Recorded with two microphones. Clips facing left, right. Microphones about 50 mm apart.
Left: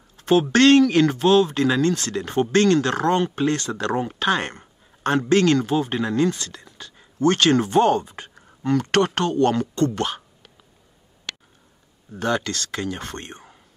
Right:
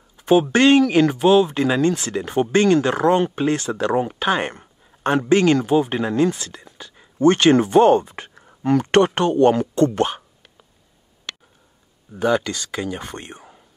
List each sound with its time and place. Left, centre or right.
0.2 s speech: centre
8.1 s a sound: right
8.5 s speech: centre
12.1 s speech: centre